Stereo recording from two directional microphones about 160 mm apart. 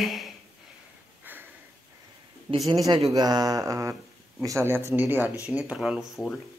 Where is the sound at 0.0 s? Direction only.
Centre (ahead or behind).